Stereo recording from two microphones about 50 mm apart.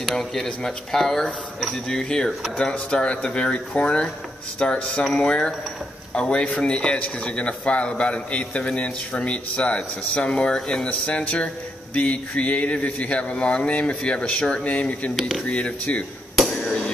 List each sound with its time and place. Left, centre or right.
0.0 s speech: centre
10.9 s speech: left
15.1 s speech: centre
15.4 s speech: left
16.3 s a sound: centre